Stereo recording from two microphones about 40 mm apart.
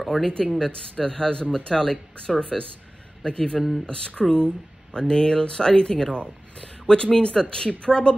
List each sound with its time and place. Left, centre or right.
0.0 s speech: centre